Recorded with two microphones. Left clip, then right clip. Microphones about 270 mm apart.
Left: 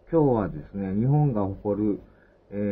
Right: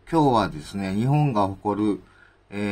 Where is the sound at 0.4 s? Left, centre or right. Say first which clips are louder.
Right 5 dB; centre.